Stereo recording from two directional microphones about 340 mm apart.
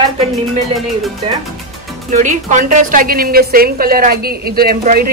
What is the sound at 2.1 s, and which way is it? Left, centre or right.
A woman's voice, right.